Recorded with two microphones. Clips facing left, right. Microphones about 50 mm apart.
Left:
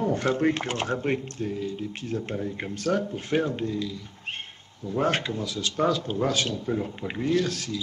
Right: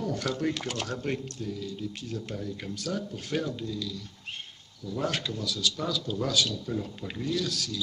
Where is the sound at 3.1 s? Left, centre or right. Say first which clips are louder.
Left 6 dB; left.